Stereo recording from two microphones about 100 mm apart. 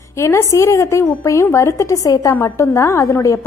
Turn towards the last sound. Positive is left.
turn(degrees=30)  # may be behind; listen again after turning